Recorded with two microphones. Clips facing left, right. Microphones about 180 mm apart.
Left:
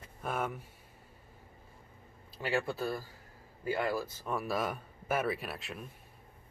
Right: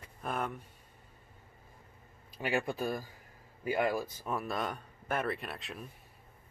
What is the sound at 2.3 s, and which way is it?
Speech, 15° right (ahead or behind).